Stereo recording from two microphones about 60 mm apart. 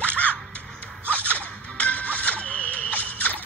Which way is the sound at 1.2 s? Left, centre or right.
Left.